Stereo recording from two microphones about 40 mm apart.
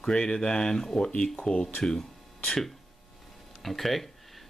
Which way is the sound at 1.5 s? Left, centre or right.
Left.